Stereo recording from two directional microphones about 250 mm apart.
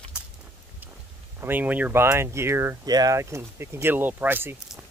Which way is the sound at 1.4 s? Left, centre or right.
Centre.